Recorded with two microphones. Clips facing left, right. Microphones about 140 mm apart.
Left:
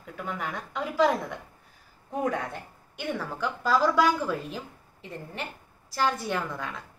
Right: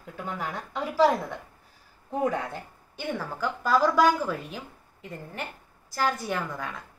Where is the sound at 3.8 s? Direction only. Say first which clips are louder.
Right 2 dB; centre (ahead or behind).